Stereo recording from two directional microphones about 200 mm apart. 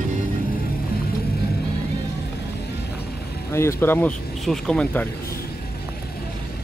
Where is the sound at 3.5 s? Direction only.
15° left (ahead or behind).